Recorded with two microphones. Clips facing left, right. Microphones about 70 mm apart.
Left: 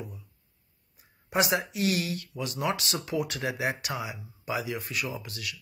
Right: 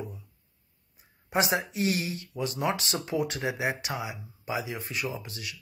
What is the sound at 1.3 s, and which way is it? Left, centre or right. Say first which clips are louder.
Speech: even; right.